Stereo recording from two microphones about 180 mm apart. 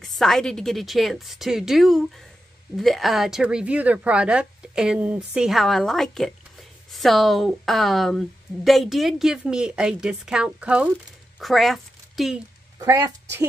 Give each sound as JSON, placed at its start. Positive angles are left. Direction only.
{"t": 0.0, "sound": "a woman's voice", "side_deg": 0}
{"t": 12.7, "sound": "speech", "side_deg": -15}